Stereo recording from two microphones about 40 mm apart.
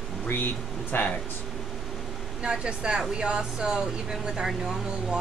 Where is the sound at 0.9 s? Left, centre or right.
Left.